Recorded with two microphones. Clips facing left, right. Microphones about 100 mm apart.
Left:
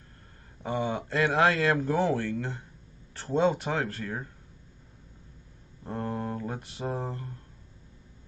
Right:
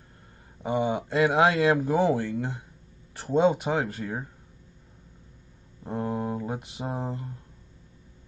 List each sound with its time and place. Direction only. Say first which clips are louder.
0.6 s speech: right 4 dB; 15° right (ahead or behind)
5.9 s speech: right 3 dB; 15° right (ahead or behind)